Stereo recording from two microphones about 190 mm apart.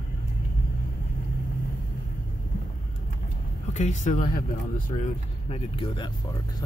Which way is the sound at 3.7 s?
40° left (ahead or behind).